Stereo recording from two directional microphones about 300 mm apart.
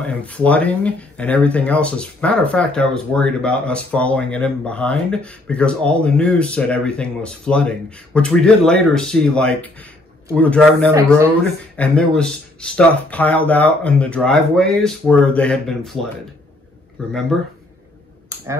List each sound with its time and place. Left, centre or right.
0.0 s speech: centre
17.3 s speech: centre